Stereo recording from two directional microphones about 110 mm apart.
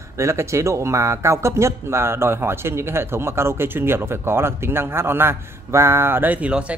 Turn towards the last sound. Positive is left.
turn(degrees=-15)  # may be behind; listen again after turning